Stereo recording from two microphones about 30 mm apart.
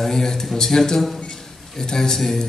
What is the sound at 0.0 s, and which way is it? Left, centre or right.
A man's voice, centre.